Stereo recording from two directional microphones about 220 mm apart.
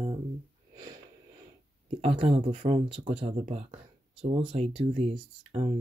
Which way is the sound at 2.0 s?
30° right (ahead or behind).